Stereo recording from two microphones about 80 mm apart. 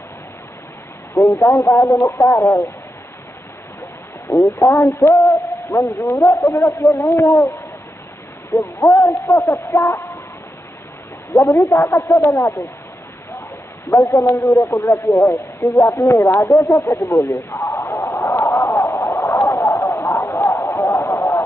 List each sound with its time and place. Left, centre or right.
1.1 s a sound: left
1.5 s speech: left
4.5 s speech: left
5.5 s a sound: left
5.9 s speech: left
8.5 s speech: centre
9.5 s speech: left
11.3 s speech: left
13.8 s speech: left
17.8 s a sound: left